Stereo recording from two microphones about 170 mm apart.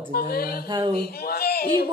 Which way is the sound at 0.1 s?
65° left (ahead or behind).